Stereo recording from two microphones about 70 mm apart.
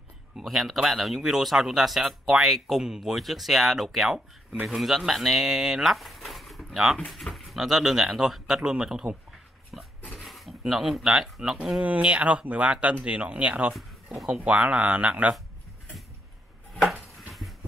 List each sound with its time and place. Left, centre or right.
0.4 s speech: centre
9.7 s speech: centre
11.8 s speech: centre
13.7 s speech: centre
16.8 s a sound: centre